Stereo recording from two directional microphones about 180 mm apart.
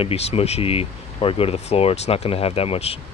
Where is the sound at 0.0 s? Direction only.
35° left (ahead or behind).